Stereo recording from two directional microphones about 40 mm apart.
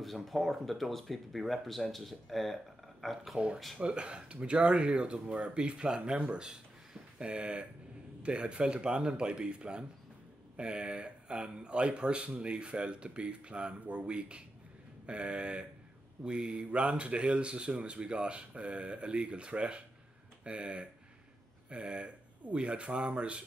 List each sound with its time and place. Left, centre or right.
0.0 s speech: centre
3.8 s speech: right